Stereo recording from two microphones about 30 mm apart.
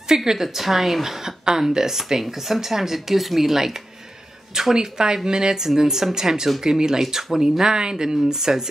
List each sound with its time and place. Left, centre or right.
0.1 s speech: centre
4.7 s speech: right